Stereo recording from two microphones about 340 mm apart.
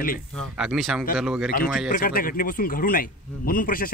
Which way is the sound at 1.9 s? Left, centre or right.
Left.